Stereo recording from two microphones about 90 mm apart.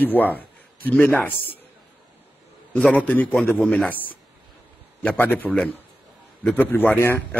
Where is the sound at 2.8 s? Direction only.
10° left (ahead or behind).